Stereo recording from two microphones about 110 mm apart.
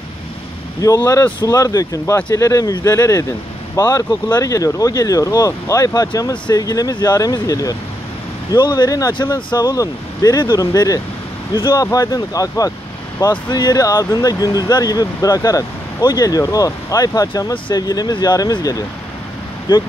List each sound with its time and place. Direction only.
0.7 s speech: 35° left (ahead or behind)
11.5 s speech: 50° left (ahead or behind)
11.8 s speech: 35° left (ahead or behind)